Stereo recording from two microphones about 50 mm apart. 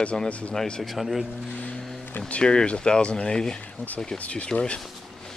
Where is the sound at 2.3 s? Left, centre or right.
Centre.